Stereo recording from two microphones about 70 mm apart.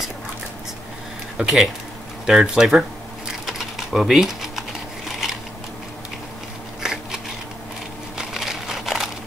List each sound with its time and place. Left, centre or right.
1.4 s speech: centre
3.4 s typing: centre
6.8 s biting: centre
8.2 s crumpling: centre